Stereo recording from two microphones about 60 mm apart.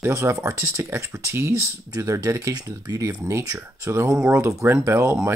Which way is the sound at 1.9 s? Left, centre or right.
Right.